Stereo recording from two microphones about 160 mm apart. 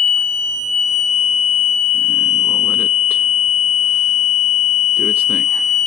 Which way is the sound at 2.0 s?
5° right (ahead or behind).